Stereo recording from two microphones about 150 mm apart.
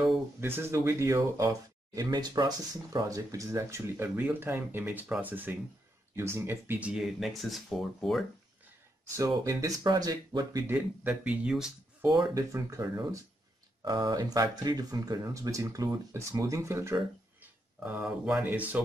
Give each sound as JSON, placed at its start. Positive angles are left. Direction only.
{"t": 0.4, "sound": "speech", "side_deg": -15}
{"t": 9.1, "sound": "speech", "side_deg": -20}
{"t": 10.7, "sound": "speech", "side_deg": -10}
{"t": 12.1, "sound": "speech", "side_deg": -25}